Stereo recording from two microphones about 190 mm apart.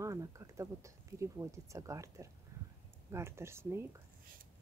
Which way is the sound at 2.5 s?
15° right (ahead or behind).